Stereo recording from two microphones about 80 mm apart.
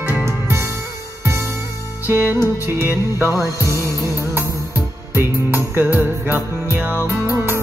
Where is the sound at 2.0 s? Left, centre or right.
Right.